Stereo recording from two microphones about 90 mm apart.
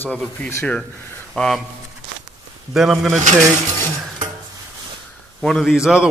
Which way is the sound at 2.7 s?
5° right (ahead or behind).